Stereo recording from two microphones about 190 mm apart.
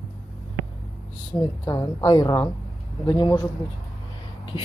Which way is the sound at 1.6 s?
20° left (ahead or behind).